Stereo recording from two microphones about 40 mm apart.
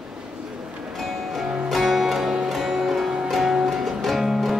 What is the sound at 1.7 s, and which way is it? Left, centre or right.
Music, centre.